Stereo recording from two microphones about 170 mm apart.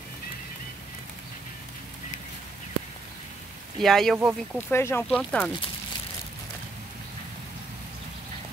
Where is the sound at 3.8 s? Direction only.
Centre (ahead or behind).